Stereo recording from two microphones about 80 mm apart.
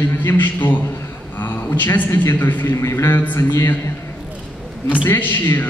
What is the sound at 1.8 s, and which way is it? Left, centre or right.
A man's voice, left.